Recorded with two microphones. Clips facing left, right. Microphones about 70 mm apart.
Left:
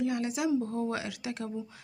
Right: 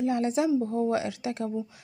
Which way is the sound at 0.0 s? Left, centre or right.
Right.